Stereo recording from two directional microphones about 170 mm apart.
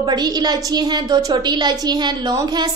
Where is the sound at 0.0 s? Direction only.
25° right (ahead or behind).